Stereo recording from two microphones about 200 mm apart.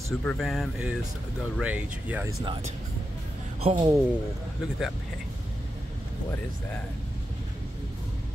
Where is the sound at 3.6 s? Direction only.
25° right (ahead or behind).